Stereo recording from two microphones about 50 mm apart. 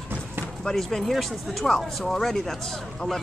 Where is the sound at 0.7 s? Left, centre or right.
Centre.